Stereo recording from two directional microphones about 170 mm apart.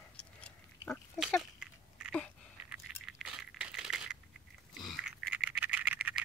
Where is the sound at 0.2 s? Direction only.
5° left (ahead or behind).